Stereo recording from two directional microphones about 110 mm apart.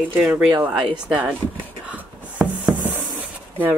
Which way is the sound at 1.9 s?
15° right (ahead or behind).